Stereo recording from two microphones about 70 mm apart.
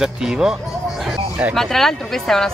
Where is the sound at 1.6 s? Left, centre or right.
Centre.